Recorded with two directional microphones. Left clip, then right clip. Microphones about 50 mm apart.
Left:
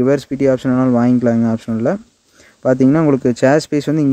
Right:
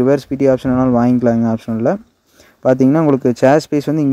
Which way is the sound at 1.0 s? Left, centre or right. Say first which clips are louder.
Right 1 dB; right.